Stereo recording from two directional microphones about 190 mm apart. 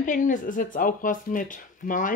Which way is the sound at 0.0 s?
45° left (ahead or behind).